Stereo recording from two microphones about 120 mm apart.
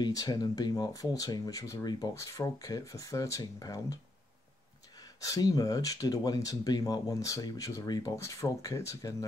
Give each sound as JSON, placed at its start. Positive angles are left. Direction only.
{"t": 0.0, "sound": "speech", "side_deg": 30}